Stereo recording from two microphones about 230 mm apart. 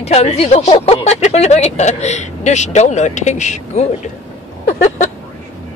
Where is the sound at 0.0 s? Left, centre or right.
Left.